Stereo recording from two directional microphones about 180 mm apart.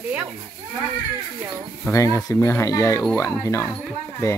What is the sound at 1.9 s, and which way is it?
Speech, 15° left (ahead or behind).